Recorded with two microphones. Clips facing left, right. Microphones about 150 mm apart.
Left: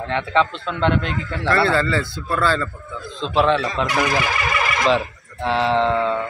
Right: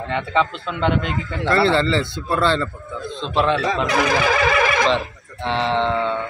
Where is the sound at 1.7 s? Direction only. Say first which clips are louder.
Right 2 dB; 25° right (ahead or behind).